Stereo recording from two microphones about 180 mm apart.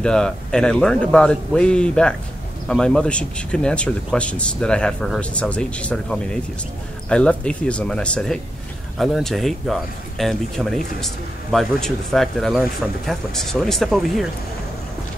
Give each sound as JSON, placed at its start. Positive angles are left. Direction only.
{"t": 0.0, "sound": "a man's voice", "side_deg": 5}